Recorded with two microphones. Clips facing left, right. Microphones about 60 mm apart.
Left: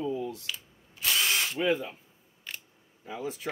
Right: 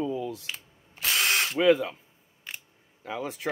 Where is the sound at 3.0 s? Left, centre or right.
Right.